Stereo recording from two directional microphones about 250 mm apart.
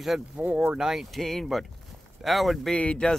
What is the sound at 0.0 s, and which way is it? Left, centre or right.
Speech, centre.